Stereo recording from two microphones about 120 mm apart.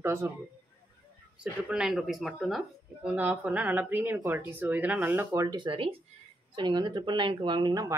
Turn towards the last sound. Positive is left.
turn(degrees=-30)  # may be behind; listen again after turning